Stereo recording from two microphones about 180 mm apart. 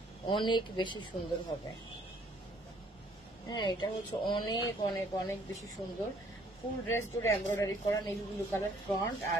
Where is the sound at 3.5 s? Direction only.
25° left (ahead or behind).